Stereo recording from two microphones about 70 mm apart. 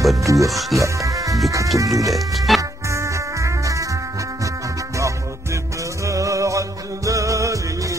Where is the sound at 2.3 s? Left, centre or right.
Centre.